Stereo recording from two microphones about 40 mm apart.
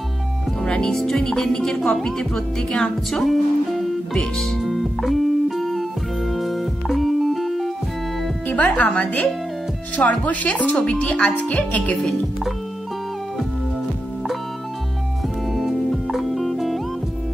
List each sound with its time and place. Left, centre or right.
0.6 s speech: centre
4.4 s music: centre
8.5 s speech: left
12.0 s speech: centre
15.5 s music: centre